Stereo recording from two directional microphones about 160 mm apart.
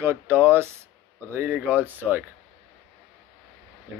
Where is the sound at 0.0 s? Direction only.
15° right (ahead or behind).